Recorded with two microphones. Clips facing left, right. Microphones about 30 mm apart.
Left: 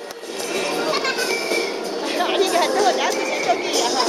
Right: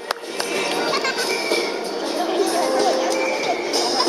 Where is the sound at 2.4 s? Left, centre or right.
Left.